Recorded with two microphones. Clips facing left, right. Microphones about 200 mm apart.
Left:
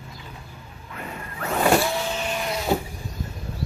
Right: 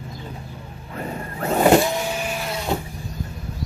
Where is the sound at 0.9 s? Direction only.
35° right (ahead or behind); by 2.7 s centre (ahead or behind).